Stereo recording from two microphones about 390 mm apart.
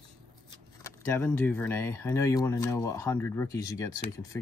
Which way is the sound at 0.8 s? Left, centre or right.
Centre.